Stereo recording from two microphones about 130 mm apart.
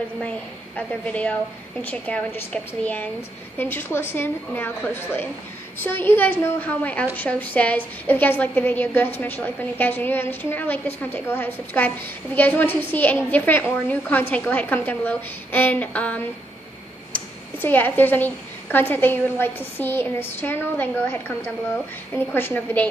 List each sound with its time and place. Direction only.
0.7 s a woman's voice: 10° left (ahead or behind)
22.3 s a woman's voice: 15° left (ahead or behind)